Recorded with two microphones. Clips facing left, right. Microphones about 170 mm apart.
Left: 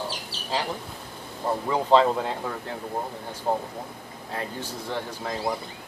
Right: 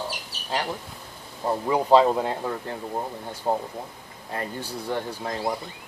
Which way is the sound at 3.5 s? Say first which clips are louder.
Right 1 dB; 10° right (ahead or behind).